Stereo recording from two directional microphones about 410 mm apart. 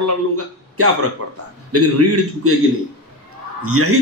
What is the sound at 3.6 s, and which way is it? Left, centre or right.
Speech, right.